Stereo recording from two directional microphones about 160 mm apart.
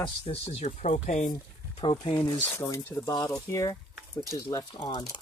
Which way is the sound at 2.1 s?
20° left (ahead or behind).